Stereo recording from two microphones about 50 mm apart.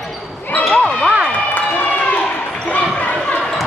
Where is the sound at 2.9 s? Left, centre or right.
Left.